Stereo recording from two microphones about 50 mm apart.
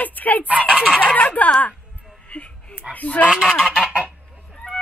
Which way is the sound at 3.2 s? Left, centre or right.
Centre.